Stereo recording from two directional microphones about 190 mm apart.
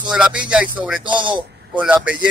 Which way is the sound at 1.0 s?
25° right (ahead or behind).